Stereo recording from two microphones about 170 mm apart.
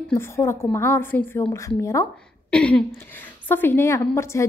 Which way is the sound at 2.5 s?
5° left (ahead or behind).